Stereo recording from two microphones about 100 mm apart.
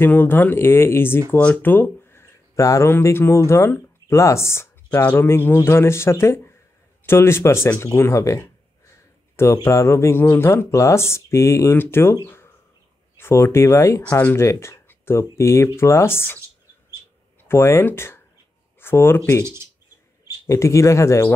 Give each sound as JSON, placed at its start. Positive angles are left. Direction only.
{"t": 0.0, "sound": "speech", "side_deg": 20}
{"t": 13.2, "sound": "speech", "side_deg": 25}
{"t": 17.4, "sound": "speech", "side_deg": 25}
{"t": 19.4, "sound": "speech", "side_deg": -25}
{"t": 20.4, "sound": "speech", "side_deg": 30}